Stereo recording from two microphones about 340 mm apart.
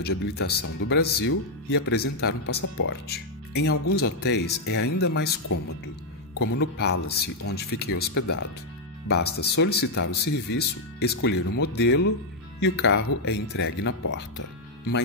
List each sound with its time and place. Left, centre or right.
0.2 s speech: left
6.3 s speech: left
6.6 s speech: left